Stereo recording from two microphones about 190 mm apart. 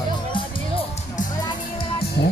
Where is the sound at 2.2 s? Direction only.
60° left (ahead or behind).